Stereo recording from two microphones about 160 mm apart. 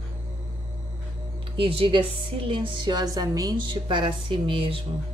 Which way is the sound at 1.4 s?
35° right (ahead or behind).